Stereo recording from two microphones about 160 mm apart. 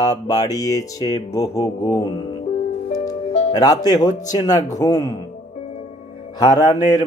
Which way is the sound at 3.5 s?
25° left (ahead or behind).